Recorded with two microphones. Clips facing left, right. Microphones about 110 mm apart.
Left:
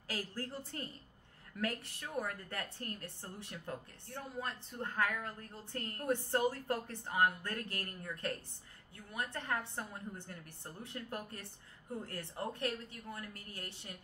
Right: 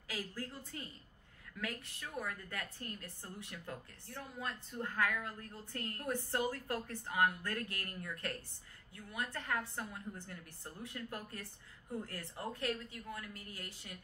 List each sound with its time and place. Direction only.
0.1 s a woman's voice: 30° left (ahead or behind)